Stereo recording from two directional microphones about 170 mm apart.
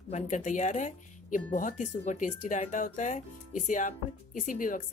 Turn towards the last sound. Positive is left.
turn(degrees=50)  # may be behind; listen again after turning